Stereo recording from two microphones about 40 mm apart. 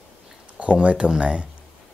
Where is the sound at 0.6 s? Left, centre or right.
Right.